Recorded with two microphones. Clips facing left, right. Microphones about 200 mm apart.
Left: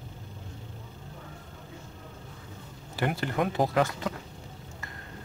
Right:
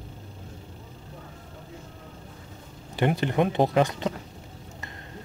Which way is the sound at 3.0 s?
20° right (ahead or behind).